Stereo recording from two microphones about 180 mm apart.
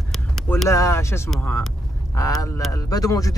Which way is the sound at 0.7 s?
15° left (ahead or behind).